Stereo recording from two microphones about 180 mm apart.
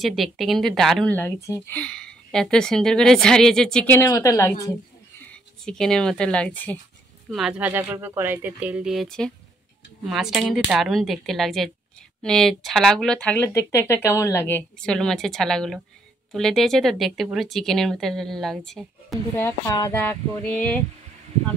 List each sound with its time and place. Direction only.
0.0 s speech: centre (ahead or behind)
1.1 s speech: 15° left (ahead or behind)
5.2 s speech: 5° left (ahead or behind)
7.2 s speech: centre (ahead or behind)
19.3 s a sound: 15° left (ahead or behind)